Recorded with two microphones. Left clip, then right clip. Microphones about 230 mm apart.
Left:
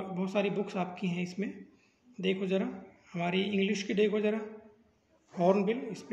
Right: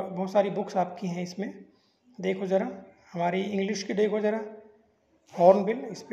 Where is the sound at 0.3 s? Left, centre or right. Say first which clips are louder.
Right 7 dB; centre.